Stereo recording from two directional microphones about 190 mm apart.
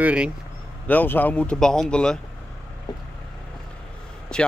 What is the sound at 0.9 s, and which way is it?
Speech, 10° left (ahead or behind).